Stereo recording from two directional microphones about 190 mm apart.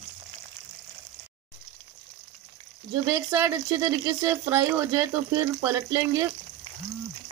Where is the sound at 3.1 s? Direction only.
10° right (ahead or behind).